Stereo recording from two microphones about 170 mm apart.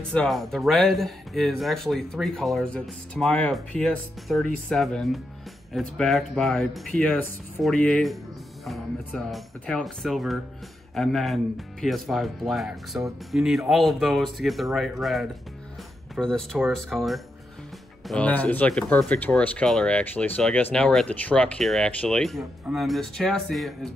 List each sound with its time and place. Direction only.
0.1 s speech: 5° left (ahead or behind)